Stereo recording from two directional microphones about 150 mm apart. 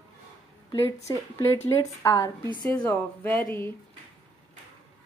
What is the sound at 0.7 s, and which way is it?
Speech, 20° left (ahead or behind).